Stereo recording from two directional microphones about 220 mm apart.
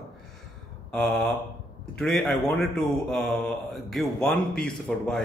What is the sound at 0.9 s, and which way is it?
A man's voice, 5° left (ahead or behind).